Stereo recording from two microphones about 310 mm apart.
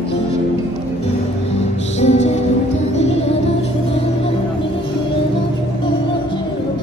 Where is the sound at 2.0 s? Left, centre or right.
Left.